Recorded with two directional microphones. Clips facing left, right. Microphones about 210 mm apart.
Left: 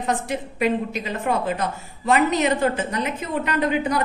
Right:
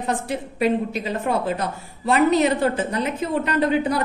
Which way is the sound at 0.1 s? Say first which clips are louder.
Left 1 dB; 30° right (ahead or behind).